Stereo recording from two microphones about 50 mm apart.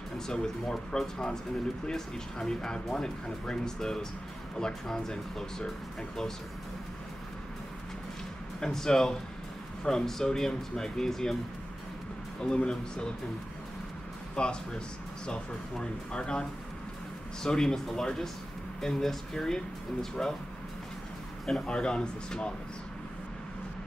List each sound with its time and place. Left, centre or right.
0.3 s speech: centre
8.5 s speech: centre
12.4 s speech: centre
14.3 s speech: centre
21.5 s speech: centre